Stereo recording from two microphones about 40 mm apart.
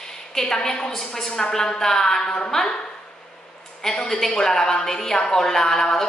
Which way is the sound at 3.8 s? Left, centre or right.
Centre.